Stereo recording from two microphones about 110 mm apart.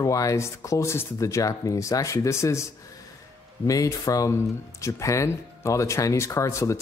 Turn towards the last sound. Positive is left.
turn(degrees=25)  # may be behind; listen again after turning